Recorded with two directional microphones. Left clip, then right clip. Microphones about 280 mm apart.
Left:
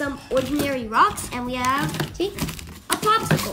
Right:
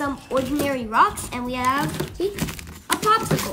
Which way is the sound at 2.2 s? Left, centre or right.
Centre.